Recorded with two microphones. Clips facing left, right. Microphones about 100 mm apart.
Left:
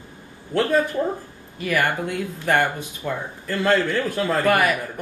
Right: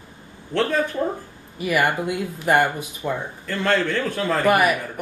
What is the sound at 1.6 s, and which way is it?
Speech, 15° right (ahead or behind).